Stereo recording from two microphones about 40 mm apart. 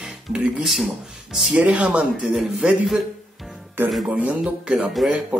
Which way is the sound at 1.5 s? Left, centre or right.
Right.